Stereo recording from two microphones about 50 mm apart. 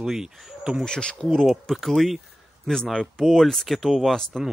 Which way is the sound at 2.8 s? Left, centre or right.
Centre.